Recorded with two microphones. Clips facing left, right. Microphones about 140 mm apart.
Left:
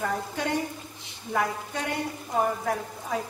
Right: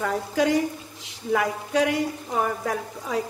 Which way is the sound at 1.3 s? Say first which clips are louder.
Right 5 dB; 90° right.